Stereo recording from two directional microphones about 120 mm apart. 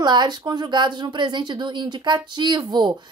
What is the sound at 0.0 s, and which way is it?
A woman's voice, 35° right (ahead or behind).